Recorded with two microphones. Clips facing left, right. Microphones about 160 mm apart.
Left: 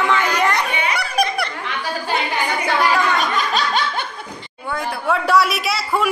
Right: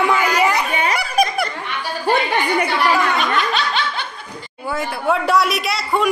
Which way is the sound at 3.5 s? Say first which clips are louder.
Left 1 dB; 45° left (ahead or behind).